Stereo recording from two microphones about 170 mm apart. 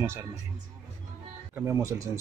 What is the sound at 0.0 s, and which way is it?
Speech, 15° right (ahead or behind).